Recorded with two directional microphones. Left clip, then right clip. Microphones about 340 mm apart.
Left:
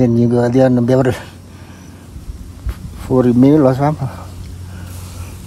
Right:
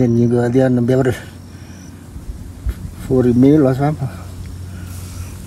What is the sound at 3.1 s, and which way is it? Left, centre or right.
Speech, centre.